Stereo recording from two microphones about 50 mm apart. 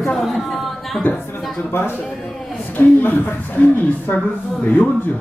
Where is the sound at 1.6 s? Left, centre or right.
Left.